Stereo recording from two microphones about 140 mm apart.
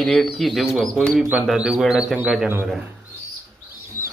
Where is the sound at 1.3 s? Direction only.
10° right (ahead or behind).